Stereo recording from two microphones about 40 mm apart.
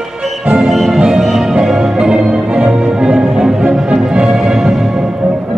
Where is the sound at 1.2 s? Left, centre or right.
Centre.